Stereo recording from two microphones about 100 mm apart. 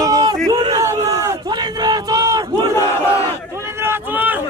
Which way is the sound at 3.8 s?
20° right (ahead or behind).